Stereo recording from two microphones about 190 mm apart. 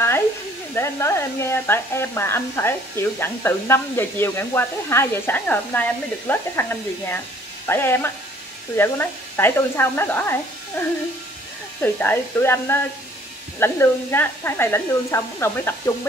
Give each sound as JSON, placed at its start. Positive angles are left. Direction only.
{"t": 0.7, "sound": "speech", "side_deg": 15}